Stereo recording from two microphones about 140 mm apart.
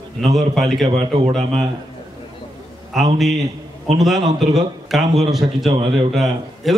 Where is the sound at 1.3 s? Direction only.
Centre (ahead or behind).